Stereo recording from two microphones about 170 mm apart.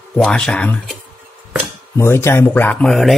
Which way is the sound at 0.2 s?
5° left (ahead or behind).